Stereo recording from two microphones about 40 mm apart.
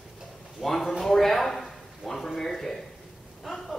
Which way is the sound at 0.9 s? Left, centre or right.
Centre.